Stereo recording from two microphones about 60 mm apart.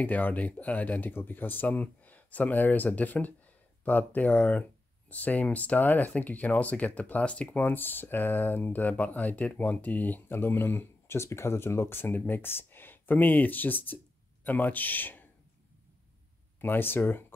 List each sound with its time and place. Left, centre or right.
0.0 s speech: left
16.6 s speech: left